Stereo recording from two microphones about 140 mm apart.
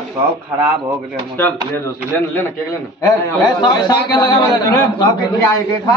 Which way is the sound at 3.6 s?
30° left (ahead or behind).